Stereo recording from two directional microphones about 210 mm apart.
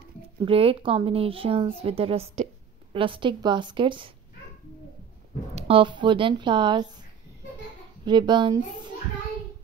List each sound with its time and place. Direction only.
0.4 s speech: 25° right (ahead or behind)
5.5 s speech: 30° right (ahead or behind)
8.0 s speech: 20° right (ahead or behind)